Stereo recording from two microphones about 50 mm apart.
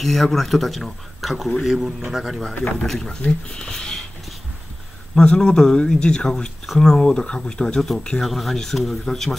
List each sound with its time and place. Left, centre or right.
0.0 s speech: centre
2.9 s speech: centre
5.2 s speech: centre